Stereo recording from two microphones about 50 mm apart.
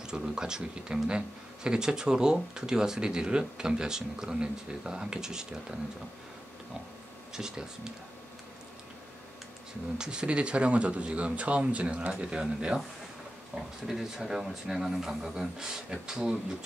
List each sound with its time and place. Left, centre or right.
0.0 s speech: centre
7.3 s speech: centre
9.9 s speech: centre
13.6 s speech: centre